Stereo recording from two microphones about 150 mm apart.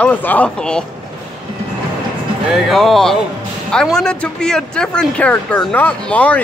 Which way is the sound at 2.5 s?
Centre (ahead or behind).